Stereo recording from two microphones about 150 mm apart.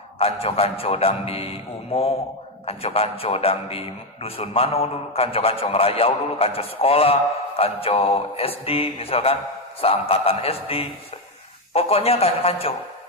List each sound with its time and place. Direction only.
0.2 s a man's voice: 40° left (ahead or behind)
2.6 s a man's voice: 40° left (ahead or behind)